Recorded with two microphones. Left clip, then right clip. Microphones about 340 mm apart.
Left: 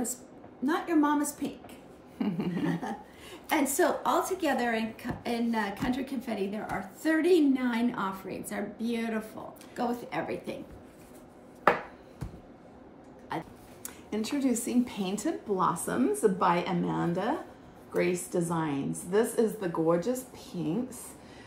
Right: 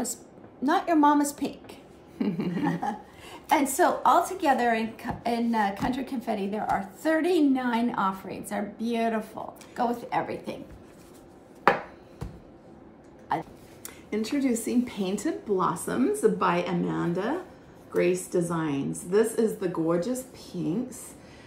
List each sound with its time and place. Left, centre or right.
0.7 s a woman's voice: right
2.1 s speech: centre
2.5 s a woman's voice: centre
13.3 s a woman's voice: centre
13.8 s speech: centre